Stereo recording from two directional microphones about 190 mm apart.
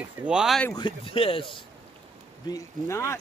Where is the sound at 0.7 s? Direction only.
25° left (ahead or behind).